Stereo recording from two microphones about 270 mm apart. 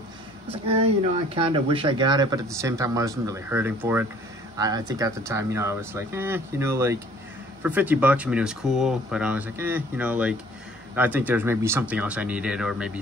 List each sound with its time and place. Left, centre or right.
0.5 s speech: right; by 13.0 s centre